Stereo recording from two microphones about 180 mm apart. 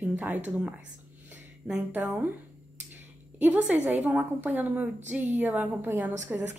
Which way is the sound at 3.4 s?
10° right (ahead or behind).